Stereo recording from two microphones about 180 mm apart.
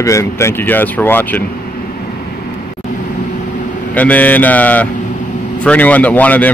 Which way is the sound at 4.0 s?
10° left (ahead or behind).